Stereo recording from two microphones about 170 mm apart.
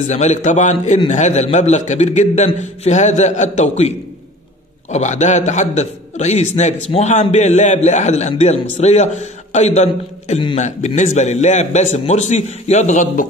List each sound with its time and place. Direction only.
0.0 s a man's voice: 45° left (ahead or behind)
4.9 s a man's voice: 45° left (ahead or behind)